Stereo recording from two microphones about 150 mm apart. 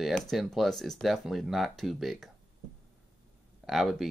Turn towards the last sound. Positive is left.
turn(degrees=0)  # may be behind; listen again after turning